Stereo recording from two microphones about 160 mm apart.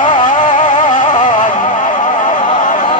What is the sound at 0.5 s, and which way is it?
Music, 50° left (ahead or behind).